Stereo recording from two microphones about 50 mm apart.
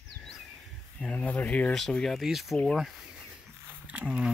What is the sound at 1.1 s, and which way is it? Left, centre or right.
Speech, left.